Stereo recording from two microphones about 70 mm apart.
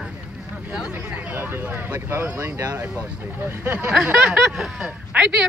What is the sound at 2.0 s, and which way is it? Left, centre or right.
Speech, right.